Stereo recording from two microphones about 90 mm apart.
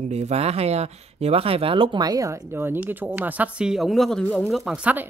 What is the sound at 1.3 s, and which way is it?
Speech, 90° right.